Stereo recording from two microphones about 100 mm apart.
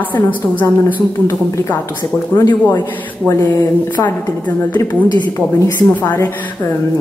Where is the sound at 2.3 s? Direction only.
40° left (ahead or behind).